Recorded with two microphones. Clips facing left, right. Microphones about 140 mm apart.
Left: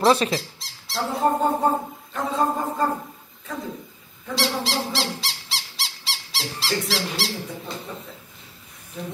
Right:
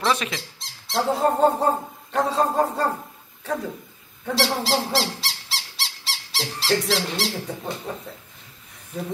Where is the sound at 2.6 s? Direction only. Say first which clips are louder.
Right 6 dB; 75° right (ahead or behind).